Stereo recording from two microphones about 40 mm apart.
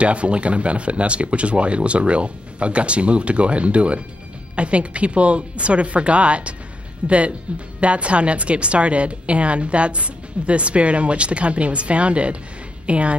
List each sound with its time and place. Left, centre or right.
0.0 s a woman's voice: right